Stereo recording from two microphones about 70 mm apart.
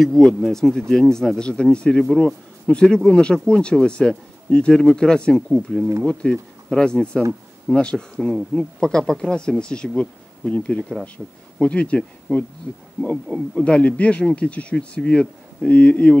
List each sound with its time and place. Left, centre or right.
0.0 s speech: centre
6.2 s speech: centre
11.2 s speech: centre
11.6 s speech: centre